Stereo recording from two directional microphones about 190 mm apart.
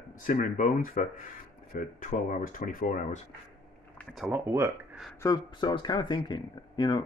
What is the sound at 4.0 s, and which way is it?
Speech, centre (ahead or behind).